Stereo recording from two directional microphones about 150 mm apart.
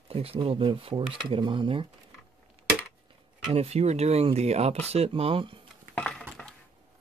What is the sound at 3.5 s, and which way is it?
Speech, 45° right (ahead or behind).